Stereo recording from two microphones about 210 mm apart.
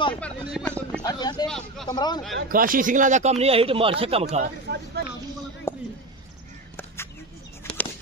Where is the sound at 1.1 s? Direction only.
20° left (ahead or behind).